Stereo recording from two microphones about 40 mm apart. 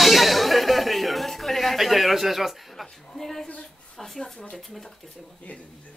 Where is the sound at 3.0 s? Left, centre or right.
Centre.